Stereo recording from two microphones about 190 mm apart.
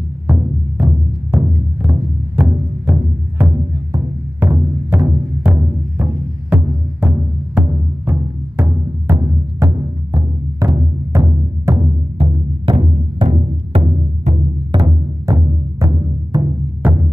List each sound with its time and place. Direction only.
1.3 s music: 10° right (ahead or behind)
16.8 s music: 5° right (ahead or behind)